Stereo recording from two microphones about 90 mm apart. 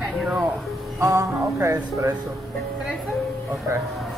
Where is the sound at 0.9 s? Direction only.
35° right (ahead or behind).